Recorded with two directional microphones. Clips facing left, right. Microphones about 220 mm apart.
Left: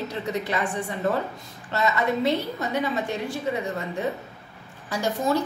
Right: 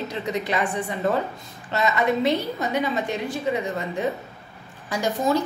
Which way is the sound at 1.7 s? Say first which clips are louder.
Right 2 dB; 15° right (ahead or behind).